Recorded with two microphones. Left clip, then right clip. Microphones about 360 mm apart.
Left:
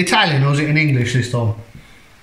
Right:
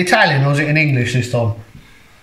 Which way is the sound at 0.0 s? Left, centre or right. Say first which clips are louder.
Right 2 dB; centre.